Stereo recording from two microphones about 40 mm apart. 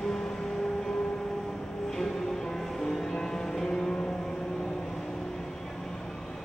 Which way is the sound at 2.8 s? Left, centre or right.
Centre.